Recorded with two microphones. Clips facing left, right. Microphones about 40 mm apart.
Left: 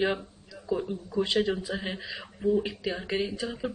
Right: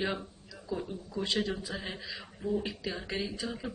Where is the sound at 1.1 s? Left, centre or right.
Left.